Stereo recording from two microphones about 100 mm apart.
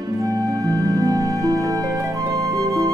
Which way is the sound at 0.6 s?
40° right (ahead or behind).